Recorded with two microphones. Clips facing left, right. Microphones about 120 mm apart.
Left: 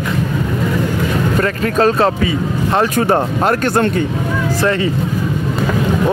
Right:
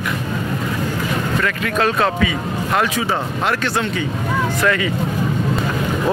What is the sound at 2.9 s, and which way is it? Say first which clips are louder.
Speech: left 7 dB; 50° left (ahead or behind).